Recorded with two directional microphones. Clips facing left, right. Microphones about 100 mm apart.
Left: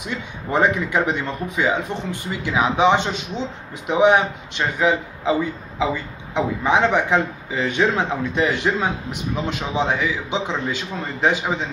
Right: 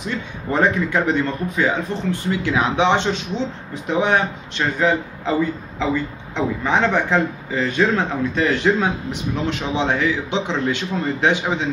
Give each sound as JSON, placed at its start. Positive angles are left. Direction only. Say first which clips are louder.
{"t": 0.0, "sound": "speech", "louder": "right 2 dB", "side_deg": 15}
{"t": 6.3, "sound": "a man's voice", "louder": "left 1 dB", "side_deg": 15}